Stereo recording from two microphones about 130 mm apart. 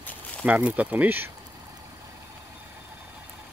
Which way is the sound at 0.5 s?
10° right (ahead or behind).